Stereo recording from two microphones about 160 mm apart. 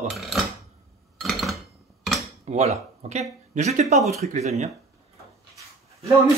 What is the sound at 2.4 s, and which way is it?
Speech, 45° right (ahead or behind).